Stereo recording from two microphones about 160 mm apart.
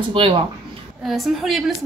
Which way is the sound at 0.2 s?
35° right (ahead or behind).